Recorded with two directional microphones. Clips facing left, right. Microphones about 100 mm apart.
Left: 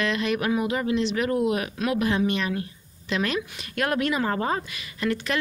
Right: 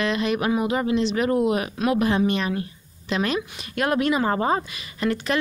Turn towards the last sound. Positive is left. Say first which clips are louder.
# right 3 dB
turn(degrees=-30)  # may be behind; listen again after turning